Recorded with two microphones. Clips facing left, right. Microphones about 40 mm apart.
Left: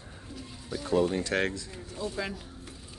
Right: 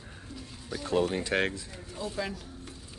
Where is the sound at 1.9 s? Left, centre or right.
Centre.